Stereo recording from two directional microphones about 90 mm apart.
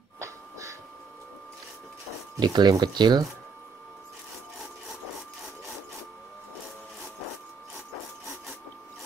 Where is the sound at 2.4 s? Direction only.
55° right (ahead or behind).